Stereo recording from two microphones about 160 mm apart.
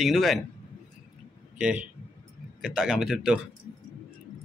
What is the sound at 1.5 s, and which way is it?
A man's voice, 5° right (ahead or behind).